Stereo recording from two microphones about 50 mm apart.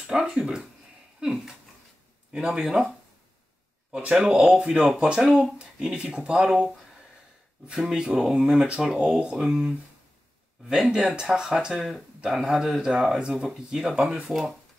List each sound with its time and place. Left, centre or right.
0.1 s speech: centre
3.9 s speech: right
4.2 s speech: centre
7.7 s speech: centre
11.7 s speech: centre